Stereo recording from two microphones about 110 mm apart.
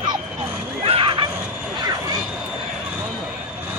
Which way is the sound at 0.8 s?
55° right (ahead or behind).